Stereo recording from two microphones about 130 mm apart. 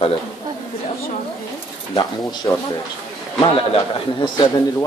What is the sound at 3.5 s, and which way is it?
Speech, 40° left (ahead or behind).